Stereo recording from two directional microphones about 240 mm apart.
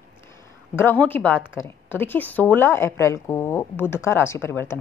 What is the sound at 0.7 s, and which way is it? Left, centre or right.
A woman's voice, centre.